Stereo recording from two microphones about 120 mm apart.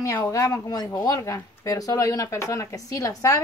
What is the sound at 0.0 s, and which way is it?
A woman's voice, 25° left (ahead or behind).